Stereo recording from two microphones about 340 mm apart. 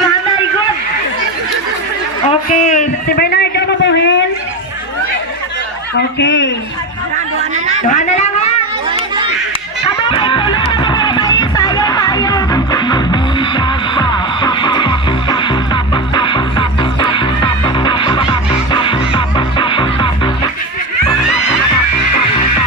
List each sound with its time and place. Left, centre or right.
2.2 s a sound: centre
5.9 s speech: left
9.8 s music: centre